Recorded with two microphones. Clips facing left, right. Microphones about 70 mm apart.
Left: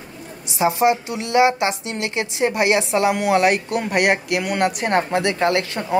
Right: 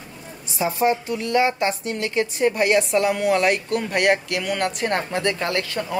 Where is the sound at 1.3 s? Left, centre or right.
Left.